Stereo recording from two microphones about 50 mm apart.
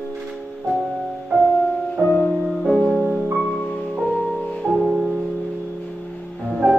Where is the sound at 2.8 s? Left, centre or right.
Centre.